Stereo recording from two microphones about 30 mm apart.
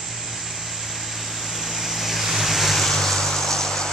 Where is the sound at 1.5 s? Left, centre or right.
Centre.